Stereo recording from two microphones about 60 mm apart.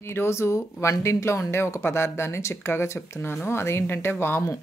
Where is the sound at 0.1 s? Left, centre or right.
Left.